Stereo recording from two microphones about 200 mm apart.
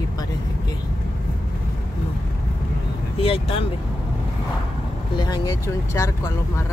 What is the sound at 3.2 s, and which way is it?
Speech, 30° left (ahead or behind).